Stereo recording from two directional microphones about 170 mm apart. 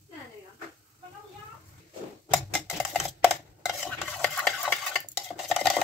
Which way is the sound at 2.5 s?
Centre (ahead or behind).